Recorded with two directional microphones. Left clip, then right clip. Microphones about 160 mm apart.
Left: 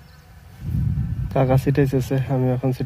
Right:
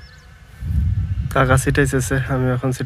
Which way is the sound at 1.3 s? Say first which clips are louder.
Right 3 dB; 25° right (ahead or behind).